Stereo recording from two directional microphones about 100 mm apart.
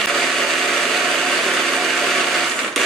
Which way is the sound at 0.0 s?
Centre (ahead or behind).